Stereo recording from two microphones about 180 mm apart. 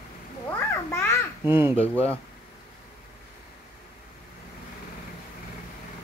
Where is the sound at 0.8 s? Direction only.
15° left (ahead or behind).